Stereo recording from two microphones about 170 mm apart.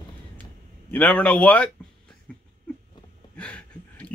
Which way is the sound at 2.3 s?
5° left (ahead or behind).